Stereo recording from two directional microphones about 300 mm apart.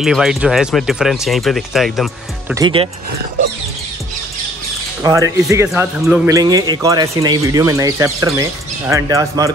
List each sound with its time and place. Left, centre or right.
0.0 s speech: centre
2.5 s speech: centre
5.0 s speech: centre